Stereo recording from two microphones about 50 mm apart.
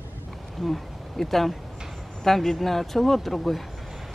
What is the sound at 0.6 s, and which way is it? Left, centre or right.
Speech, centre.